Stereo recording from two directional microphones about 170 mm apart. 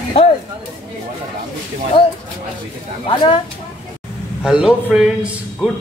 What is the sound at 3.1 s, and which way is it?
Speech, 30° left (ahead or behind).